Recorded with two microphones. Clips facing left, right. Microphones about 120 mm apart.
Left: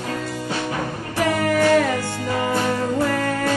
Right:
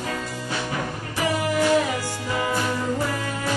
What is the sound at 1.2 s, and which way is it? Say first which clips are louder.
Music: left 3 dB; 60° left (ahead or behind).